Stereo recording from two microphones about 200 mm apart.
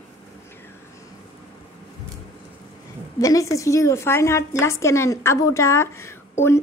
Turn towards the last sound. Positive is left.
turn(degrees=10)  # may be behind; listen again after turning